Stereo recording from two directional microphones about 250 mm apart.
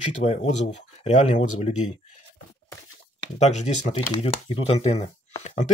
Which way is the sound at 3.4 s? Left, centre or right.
Left.